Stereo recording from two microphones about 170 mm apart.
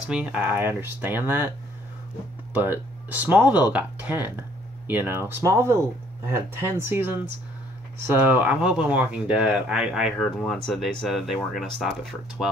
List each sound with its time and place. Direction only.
0.1 s speech: 10° right (ahead or behind)
2.5 s speech: 10° right (ahead or behind)